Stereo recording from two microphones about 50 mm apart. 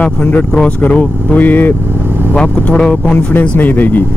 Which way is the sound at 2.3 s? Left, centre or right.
Centre.